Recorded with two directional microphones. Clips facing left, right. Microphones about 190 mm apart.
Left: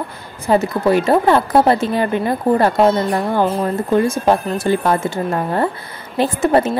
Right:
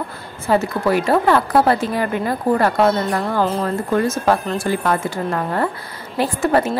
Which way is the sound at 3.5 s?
10° left (ahead or behind).